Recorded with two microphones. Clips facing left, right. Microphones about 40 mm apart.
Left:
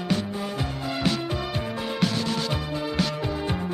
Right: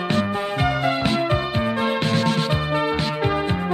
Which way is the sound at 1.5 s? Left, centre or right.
Right.